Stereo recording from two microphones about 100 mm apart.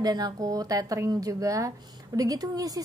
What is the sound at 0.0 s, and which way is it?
A woman's voice, 40° right (ahead or behind).